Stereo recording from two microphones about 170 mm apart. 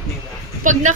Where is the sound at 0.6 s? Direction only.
50° right (ahead or behind).